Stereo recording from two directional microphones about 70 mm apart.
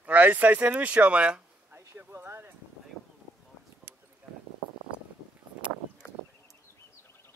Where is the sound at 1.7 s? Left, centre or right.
Right.